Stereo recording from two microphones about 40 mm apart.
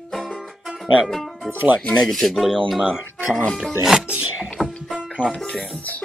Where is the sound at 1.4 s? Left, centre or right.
Right.